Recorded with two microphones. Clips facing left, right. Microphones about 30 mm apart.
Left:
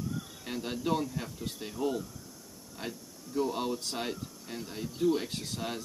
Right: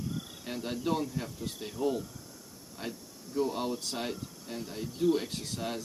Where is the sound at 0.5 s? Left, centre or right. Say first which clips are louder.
Left 1 dB; centre.